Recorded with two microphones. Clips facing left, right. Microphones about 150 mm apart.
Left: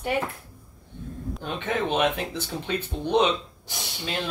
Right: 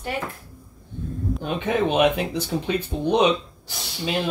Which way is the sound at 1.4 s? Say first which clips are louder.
Right 5 dB; 15° right (ahead or behind).